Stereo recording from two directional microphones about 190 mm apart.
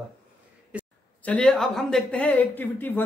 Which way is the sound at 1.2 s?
5° left (ahead or behind).